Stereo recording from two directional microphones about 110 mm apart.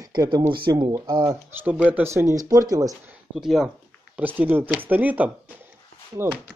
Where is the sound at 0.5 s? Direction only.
45° right (ahead or behind).